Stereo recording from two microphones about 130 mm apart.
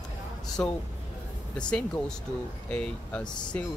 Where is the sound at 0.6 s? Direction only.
10° left (ahead or behind).